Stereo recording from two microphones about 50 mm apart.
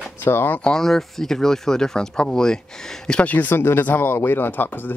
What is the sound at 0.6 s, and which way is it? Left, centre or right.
Speech, centre.